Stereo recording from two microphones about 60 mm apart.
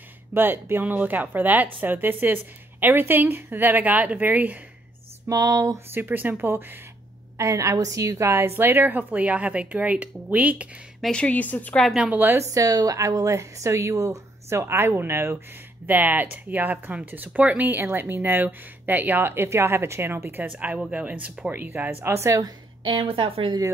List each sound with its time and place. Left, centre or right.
0.3 s a woman's voice: right
5.3 s a woman's voice: right
5.9 s a woman's voice: right
7.3 s a woman's voice: right
11.1 s a woman's voice: left
12.1 s a woman's voice: right
12.5 s a woman's voice: right
15.9 s speech: right
17.8 s a woman's voice: right
20.5 s a woman's voice: right